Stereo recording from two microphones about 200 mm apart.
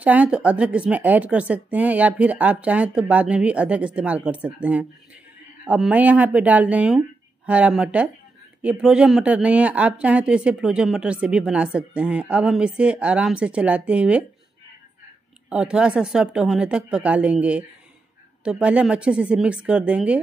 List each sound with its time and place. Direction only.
0.0 s a woman's voice: 5° right (ahead or behind)
15.5 s speech: 5° right (ahead or behind)